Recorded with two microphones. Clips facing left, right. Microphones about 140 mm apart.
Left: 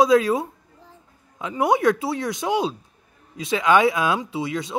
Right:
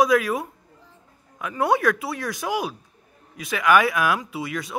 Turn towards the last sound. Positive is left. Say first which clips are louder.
# left 3 dB
turn(degrees=25)  # may be behind; listen again after turning